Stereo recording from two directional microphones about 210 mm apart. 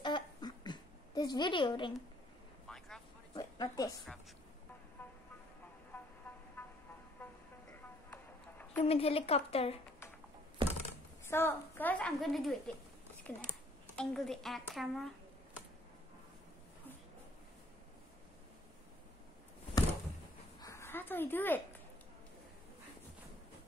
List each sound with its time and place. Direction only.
0.0 s a sound: 20° left (ahead or behind)
3.3 s a woman's voice: 20° left (ahead or behind)
8.1 s music: 10° left (ahead or behind)
8.8 s a woman's voice: 30° left (ahead or behind)
11.2 s a woman's voice: 10° left (ahead or behind)
20.6 s a sound: 15° left (ahead or behind)